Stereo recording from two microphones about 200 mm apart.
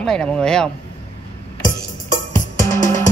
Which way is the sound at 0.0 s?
5° left (ahead or behind).